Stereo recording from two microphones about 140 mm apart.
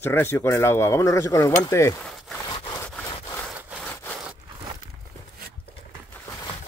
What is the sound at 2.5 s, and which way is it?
Sawing, 30° left (ahead or behind).